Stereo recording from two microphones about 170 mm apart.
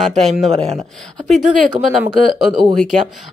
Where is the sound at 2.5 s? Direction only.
25° right (ahead or behind).